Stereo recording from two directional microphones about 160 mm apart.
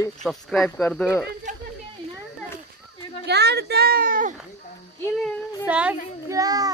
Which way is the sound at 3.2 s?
90° right.